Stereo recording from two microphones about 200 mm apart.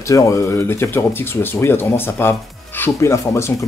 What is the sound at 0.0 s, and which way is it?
Speech, 15° left (ahead or behind).